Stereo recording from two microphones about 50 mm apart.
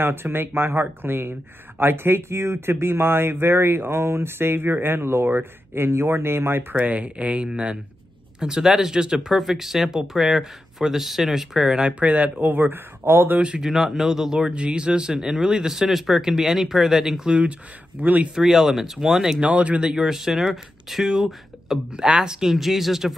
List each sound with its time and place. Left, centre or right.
0.0 s speech: right
6.7 s speech: right; by 11.9 s centre
11.9 s speech: right
12.4 s speech: right
13.6 s speech: centre
18.0 s speech: right
18.3 s speech: centre
19.4 s speech: right; by 23.1 s centre